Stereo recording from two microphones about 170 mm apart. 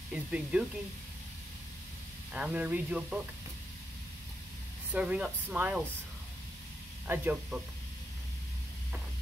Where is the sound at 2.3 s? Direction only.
10° right (ahead or behind).